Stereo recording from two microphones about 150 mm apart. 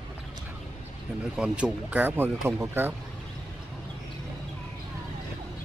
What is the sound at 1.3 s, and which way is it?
Speech, 5° right (ahead or behind).